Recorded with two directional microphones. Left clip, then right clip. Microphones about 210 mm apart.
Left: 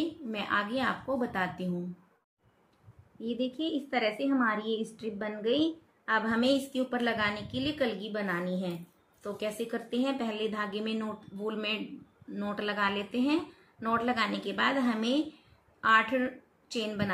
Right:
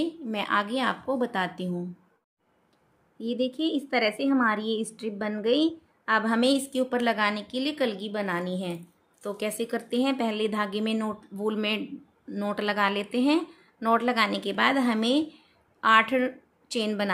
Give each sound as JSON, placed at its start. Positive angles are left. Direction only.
{"t": 0.0, "sound": "a woman's voice", "side_deg": -50}
{"t": 3.2, "sound": "a woman's voice", "side_deg": -55}